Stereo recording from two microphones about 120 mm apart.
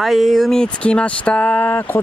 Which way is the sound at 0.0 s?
Centre (ahead or behind).